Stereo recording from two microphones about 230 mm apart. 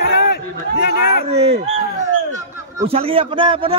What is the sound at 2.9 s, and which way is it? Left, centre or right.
Speech, right.